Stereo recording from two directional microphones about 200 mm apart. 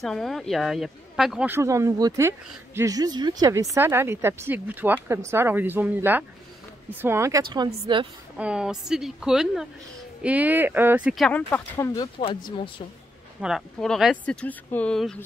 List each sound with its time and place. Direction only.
0.0 s a woman's voice: centre (ahead or behind); by 8.1 s 25° right (ahead or behind)
8.4 s a woman's voice: 5° right (ahead or behind); by 12.8 s 25° left (ahead or behind)
13.4 s speech: centre (ahead or behind)